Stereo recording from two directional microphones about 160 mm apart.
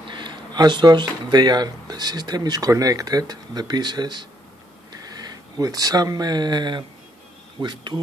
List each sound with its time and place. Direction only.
0.1 s speech: 30° right (ahead or behind)